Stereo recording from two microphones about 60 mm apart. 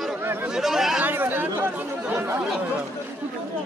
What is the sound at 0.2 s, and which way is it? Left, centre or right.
Chatter, right.